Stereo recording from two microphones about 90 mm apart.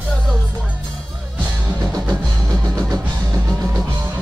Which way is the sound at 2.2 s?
40° right (ahead or behind).